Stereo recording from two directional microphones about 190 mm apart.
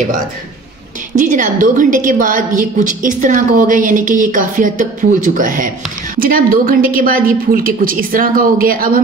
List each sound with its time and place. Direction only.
1.1 s a woman's voice: 45° right (ahead or behind)